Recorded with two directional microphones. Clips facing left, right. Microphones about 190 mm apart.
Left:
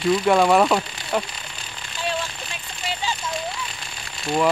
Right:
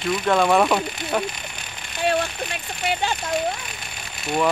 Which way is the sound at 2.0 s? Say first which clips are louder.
Right 6 dB; 60° right (ahead or behind).